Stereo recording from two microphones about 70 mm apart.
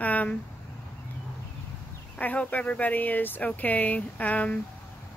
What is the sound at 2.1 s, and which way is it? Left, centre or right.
Speech, left.